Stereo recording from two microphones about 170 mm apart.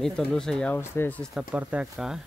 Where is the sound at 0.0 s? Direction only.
5° left (ahead or behind).